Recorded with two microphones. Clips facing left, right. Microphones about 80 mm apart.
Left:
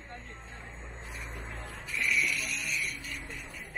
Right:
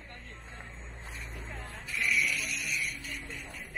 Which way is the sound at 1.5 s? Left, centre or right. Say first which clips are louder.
Left 1 dB; centre.